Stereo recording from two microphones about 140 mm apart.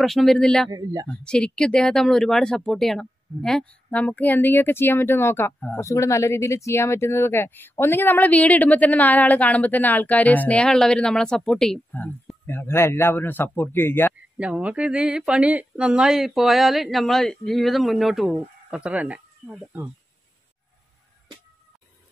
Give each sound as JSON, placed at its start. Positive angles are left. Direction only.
{"t": 0.0, "sound": "speech", "side_deg": 0}
{"t": 0.7, "sound": "speech", "side_deg": -25}
{"t": 1.0, "sound": "speech", "side_deg": 5}
{"t": 14.4, "sound": "speech", "side_deg": -10}